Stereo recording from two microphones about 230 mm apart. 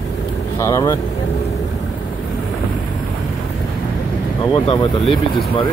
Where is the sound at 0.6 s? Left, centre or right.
Centre.